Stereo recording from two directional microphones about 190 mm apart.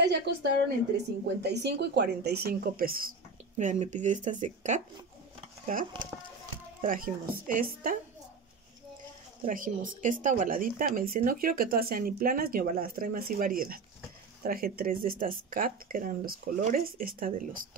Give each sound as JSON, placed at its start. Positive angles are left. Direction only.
{"t": 0.0, "sound": "a woman's voice", "side_deg": -60}
{"t": 3.5, "sound": "speech", "side_deg": -40}
{"t": 9.5, "sound": "speech", "side_deg": -45}